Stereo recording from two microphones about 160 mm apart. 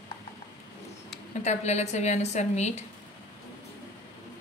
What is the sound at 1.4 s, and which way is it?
A woman's voice, 45° left (ahead or behind).